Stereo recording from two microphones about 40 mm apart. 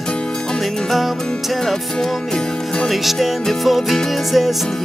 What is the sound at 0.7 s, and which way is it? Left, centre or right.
Music, centre.